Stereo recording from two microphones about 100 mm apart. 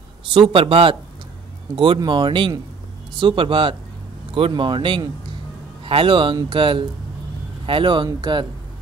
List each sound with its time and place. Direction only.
0.3 s speech: 65° right (ahead or behind)
2.0 s speech: 50° right (ahead or behind)